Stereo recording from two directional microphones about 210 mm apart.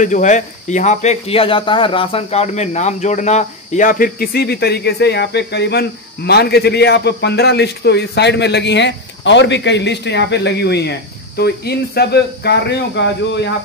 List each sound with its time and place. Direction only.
0.0 s speech: 35° left (ahead or behind); by 13.5 s 55° left (ahead or behind)